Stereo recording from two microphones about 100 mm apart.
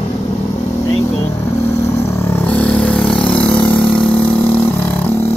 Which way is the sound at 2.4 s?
15° left (ahead or behind).